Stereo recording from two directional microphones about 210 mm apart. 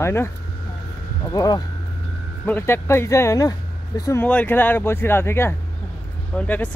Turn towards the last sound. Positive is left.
turn(degrees=10)  # may be behind; listen again after turning